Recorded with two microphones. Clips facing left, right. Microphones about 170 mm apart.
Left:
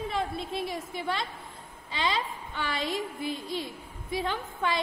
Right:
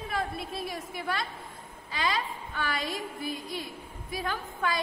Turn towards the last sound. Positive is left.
turn(degrees=25)  # may be behind; listen again after turning